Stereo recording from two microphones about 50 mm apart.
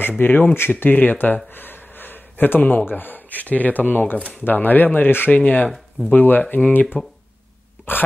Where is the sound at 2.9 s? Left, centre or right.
Left.